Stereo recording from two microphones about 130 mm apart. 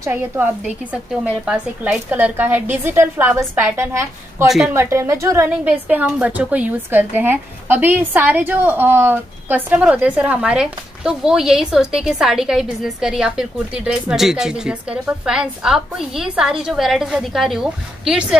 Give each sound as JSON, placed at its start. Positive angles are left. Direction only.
{"t": 0.0, "sound": "a woman's voice", "side_deg": -15}